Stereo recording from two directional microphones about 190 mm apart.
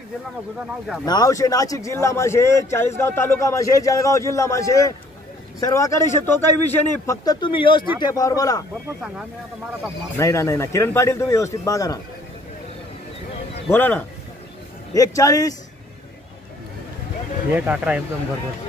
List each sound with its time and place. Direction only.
1.0 s a man's voice: 20° left (ahead or behind)
10.1 s a man's voice: 15° left (ahead or behind)
13.7 s a man's voice: 10° left (ahead or behind)
17.6 s speech: 5° right (ahead or behind)